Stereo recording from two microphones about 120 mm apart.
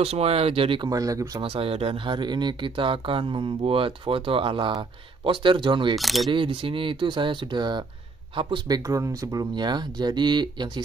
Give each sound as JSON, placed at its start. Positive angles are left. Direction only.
{"t": 0.0, "sound": "speech", "side_deg": -55}
{"t": 0.8, "sound": "speech", "side_deg": -30}
{"t": 1.4, "sound": "speech", "side_deg": -50}
{"t": 5.9, "sound": "speech", "side_deg": 0}
{"t": 6.3, "sound": "speech", "side_deg": -45}